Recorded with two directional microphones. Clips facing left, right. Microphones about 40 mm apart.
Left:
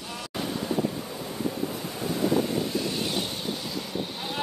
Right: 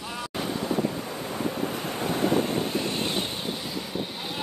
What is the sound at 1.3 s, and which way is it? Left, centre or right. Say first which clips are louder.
Waves: right 1 dB; right.